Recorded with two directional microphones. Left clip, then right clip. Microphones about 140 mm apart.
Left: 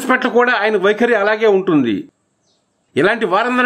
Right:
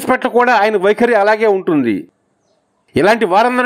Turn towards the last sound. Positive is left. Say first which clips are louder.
# right 3 dB
turn(degrees=-30)  # may be behind; listen again after turning